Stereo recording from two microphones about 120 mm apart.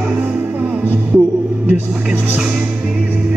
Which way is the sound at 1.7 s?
10° right (ahead or behind).